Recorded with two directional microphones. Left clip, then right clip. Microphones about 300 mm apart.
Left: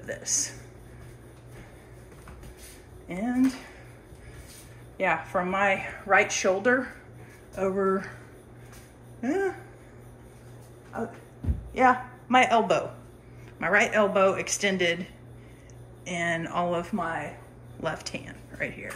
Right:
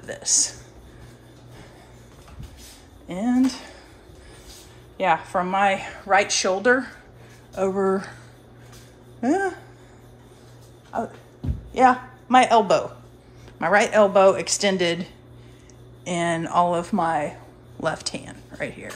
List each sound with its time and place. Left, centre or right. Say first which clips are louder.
0.0 s a woman's voice: right 7 dB; centre
3.1 s speech: right 6 dB; centre
4.9 s a woman's voice: right 5 dB; centre
9.2 s a woman's voice: right 5 dB; centre
11.7 s a woman's voice: right 4 dB; centre
16.1 s a woman's voice: right 5 dB; centre